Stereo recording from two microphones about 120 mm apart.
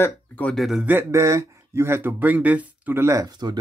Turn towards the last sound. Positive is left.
turn(degrees=-35)  # may be behind; listen again after turning